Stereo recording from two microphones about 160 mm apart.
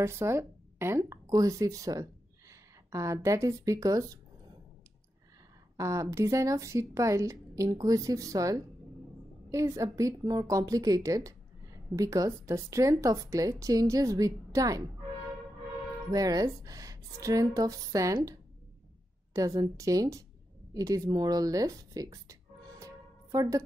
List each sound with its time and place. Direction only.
0.0 s speech: 15° right (ahead or behind)
5.8 s speech: 20° right (ahead or behind)
16.1 s speech: 20° right (ahead or behind)